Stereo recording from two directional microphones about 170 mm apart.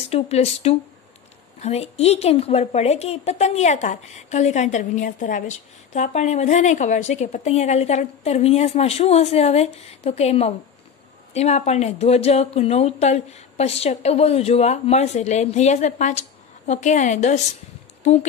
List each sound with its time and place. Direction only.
0.1 s speech: 40° left (ahead or behind)